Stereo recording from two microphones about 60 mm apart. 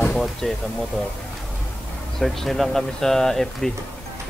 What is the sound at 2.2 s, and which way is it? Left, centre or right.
Speech, centre.